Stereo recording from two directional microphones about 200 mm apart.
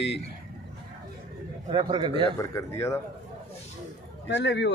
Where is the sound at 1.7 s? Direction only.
25° right (ahead or behind).